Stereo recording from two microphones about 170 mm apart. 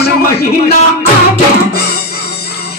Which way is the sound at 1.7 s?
65° left (ahead or behind).